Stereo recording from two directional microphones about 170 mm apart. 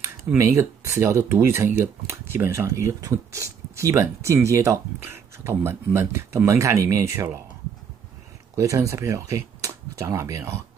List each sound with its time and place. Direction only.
0.4 s speech: 15° right (ahead or behind)
8.5 s speech: 20° right (ahead or behind)